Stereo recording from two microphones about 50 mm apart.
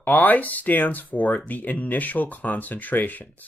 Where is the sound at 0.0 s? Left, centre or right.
Left.